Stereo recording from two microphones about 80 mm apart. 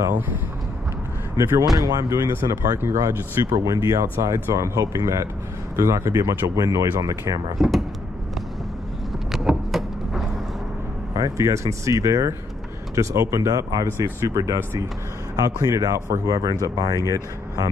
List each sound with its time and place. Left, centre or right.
1.8 s speech: right
7.5 s speech: centre
9.3 s a sound: centre
11.1 s speech: right